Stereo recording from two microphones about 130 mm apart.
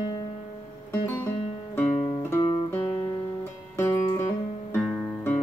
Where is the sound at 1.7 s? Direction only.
15° left (ahead or behind).